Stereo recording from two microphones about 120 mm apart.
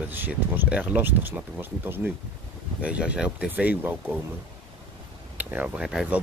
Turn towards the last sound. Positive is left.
turn(degrees=-5)  # may be behind; listen again after turning